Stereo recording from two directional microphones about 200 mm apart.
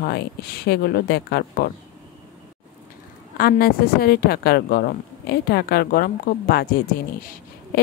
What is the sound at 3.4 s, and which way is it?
Speech, 50° left (ahead or behind).